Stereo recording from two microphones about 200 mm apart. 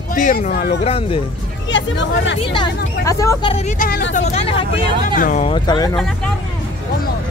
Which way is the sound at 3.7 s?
45° left (ahead or behind).